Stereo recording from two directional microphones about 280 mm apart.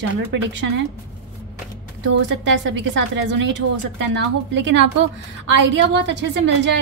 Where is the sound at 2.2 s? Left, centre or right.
Right.